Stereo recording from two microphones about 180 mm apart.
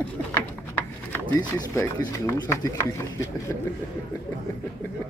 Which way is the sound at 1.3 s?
20° left (ahead or behind).